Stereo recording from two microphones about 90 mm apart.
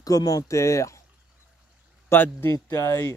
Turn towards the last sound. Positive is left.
turn(degrees=30)  # may be behind; listen again after turning